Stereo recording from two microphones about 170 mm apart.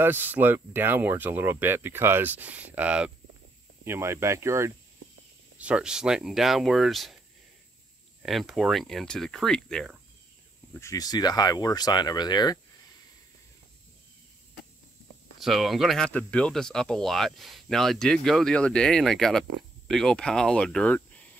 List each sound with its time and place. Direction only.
0.0 s speech: 10° right (ahead or behind)
8.2 s speech: centre (ahead or behind)
10.7 s speech: 15° left (ahead or behind)
15.4 s speech: centre (ahead or behind)